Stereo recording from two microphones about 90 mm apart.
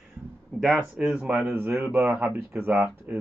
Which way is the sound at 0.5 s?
5° right (ahead or behind).